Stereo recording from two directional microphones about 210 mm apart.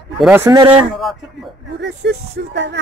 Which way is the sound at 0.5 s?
15° right (ahead or behind).